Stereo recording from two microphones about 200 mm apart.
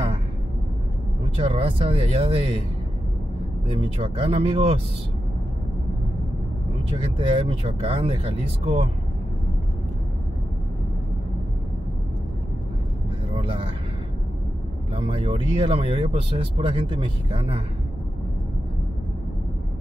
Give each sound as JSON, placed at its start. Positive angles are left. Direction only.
{"t": 1.3, "sound": "speech", "side_deg": -25}
{"t": 4.0, "sound": "speech", "side_deg": -25}
{"t": 7.0, "sound": "speech", "side_deg": -25}
{"t": 13.4, "sound": "vehicle", "side_deg": -25}
{"t": 15.0, "sound": "speech", "side_deg": -25}